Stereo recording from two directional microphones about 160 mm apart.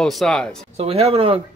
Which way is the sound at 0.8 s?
40° right (ahead or behind).